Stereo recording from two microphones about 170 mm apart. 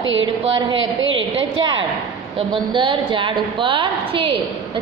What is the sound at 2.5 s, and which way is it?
A woman's voice, 30° right (ahead or behind).